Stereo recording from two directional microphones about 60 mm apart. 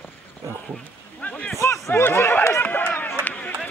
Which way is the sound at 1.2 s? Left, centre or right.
Left.